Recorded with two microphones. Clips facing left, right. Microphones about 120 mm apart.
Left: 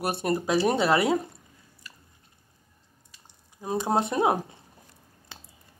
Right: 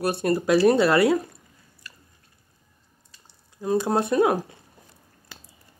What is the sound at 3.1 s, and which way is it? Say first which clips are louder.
Speech: right 1 dB; 15° left (ahead or behind).